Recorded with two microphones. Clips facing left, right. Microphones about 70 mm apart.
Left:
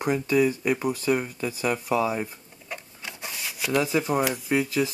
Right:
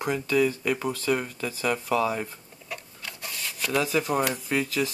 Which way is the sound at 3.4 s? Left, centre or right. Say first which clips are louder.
Left 2 dB; centre.